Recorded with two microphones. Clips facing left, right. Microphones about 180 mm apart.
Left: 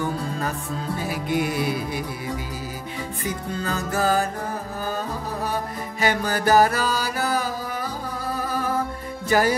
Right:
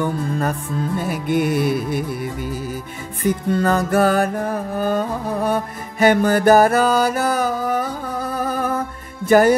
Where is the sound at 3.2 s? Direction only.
60° right (ahead or behind).